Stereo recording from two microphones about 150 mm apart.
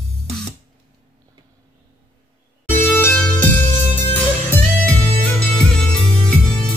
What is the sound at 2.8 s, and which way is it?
Music, 10° left (ahead or behind).